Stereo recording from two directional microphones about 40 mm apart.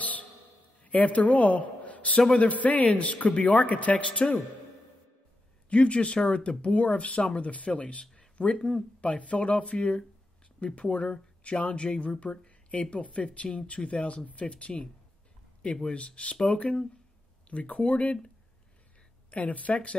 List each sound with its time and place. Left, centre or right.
0.8 s a man's voice: left
4.2 s speech: left
5.7 s speech: left
19.3 s speech: left